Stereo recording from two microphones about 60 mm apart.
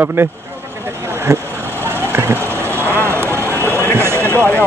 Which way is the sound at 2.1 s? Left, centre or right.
Right.